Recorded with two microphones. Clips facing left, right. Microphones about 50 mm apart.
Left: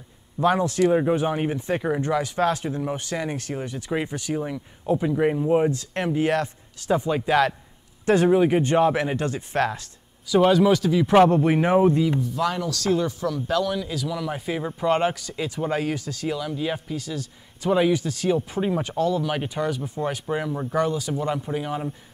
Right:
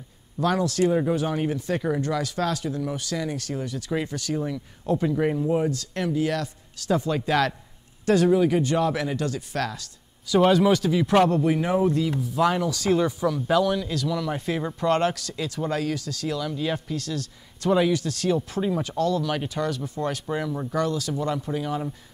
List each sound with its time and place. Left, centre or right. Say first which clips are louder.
0.4 s speech: left 2 dB; left
8.0 s speech: left 1 dB; left
10.2 s speech: left 1 dB; centre
11.2 s speech: left 3 dB; left
12.2 s speech: right 2 dB; centre